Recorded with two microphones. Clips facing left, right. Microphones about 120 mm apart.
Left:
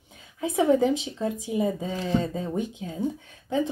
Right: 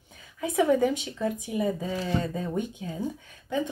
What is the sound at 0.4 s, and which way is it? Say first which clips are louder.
Speech: left 1 dB; 25° left (ahead or behind).